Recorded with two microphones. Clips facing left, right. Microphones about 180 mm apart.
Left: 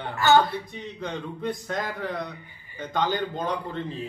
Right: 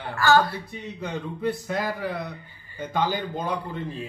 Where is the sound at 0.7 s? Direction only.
10° right (ahead or behind).